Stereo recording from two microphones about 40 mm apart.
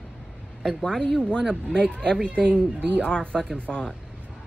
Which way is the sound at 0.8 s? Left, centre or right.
Centre.